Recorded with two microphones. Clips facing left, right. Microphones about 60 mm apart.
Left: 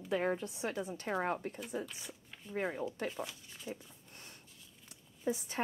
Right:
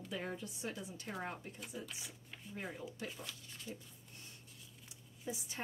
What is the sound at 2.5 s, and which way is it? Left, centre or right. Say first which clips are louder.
Speech: left 9 dB; left.